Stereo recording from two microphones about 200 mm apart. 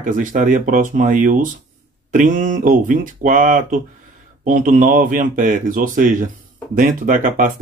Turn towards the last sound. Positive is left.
turn(degrees=-40)  # may be behind; listen again after turning